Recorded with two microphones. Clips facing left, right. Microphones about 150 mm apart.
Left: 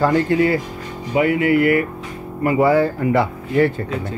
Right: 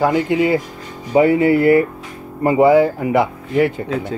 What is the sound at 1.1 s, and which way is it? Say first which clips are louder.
Speech: right 4 dB; 30° right (ahead or behind).